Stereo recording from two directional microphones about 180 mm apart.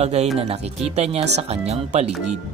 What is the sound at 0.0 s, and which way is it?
Speech, 35° right (ahead or behind).